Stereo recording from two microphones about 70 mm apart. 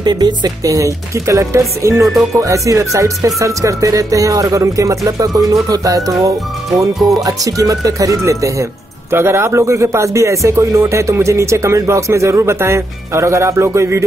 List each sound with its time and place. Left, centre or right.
0.0 s speech: right
0.7 s speech: right
7.0 s speech: centre
7.2 s speech: right
9.1 s speech: right